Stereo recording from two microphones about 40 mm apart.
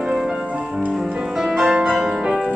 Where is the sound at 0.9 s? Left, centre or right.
Centre.